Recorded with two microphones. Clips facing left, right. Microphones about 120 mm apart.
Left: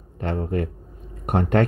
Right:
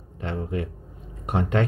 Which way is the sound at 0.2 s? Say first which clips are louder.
Left 4 dB; 50° left (ahead or behind).